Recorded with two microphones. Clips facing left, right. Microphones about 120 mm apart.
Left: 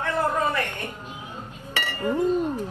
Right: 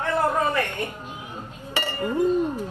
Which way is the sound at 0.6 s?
15° right (ahead or behind).